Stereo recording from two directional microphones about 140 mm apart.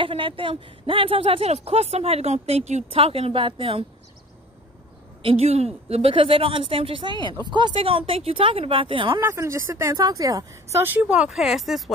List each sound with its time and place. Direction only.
0.0 s speech: 40° right (ahead or behind)
5.2 s speech: 50° right (ahead or behind)
9.2 s speech: 20° right (ahead or behind); by 11.8 s centre (ahead or behind)